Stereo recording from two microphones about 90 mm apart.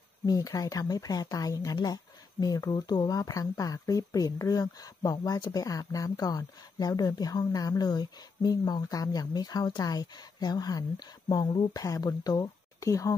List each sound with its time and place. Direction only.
0.3 s speech: 40° left (ahead or behind)